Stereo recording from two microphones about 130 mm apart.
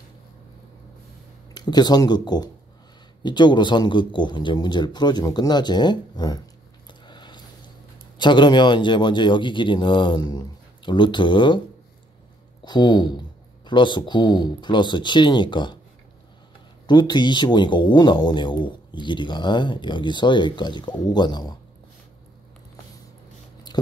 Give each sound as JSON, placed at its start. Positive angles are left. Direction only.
{"t": 1.5, "sound": "speech", "side_deg": 30}
{"t": 6.9, "sound": "a sound", "side_deg": 35}
{"t": 8.2, "sound": "speech", "side_deg": 35}
{"t": 12.6, "sound": "speech", "side_deg": 35}
{"t": 16.8, "sound": "speech", "side_deg": 35}